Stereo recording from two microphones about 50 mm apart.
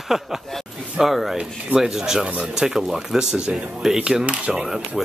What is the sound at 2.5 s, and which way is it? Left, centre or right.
Speech, centre.